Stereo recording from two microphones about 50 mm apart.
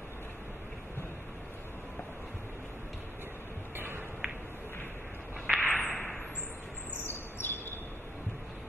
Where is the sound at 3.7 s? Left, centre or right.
Right.